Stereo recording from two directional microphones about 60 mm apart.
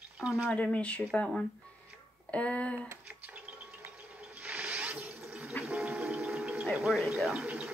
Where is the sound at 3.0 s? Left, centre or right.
Right.